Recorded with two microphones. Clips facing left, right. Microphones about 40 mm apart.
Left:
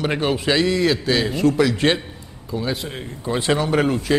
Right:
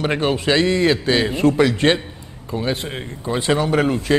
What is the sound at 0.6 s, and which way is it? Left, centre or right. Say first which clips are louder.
A man's voice: right 2 dB; right.